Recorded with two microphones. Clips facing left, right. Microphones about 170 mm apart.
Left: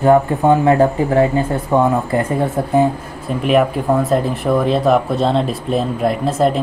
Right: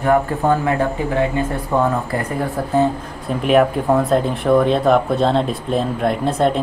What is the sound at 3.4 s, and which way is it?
Speech, centre (ahead or behind).